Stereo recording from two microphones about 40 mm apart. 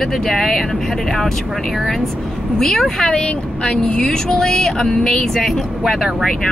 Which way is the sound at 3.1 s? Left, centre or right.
Left.